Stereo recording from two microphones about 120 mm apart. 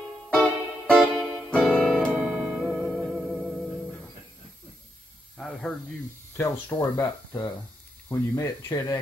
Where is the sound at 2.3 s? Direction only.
5° right (ahead or behind).